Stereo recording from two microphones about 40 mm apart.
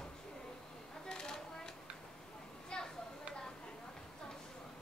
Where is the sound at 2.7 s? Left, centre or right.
Left.